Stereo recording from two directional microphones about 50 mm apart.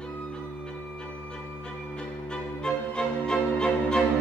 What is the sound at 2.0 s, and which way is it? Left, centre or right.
Music, centre.